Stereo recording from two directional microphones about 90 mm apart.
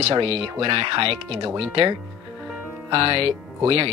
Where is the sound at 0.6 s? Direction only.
80° right.